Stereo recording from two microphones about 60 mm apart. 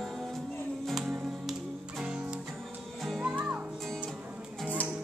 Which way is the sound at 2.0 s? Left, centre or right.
Centre.